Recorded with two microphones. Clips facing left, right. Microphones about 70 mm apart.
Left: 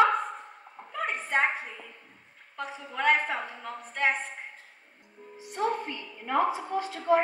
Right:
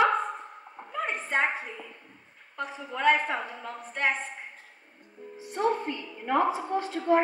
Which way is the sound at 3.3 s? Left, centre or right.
Centre.